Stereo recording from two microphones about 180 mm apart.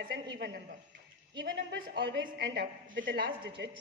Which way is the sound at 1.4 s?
75° right (ahead or behind).